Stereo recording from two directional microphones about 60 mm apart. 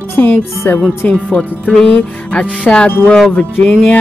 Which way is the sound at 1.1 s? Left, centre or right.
Centre.